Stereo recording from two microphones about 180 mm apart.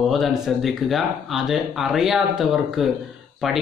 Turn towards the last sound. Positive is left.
turn(degrees=0)  # may be behind; listen again after turning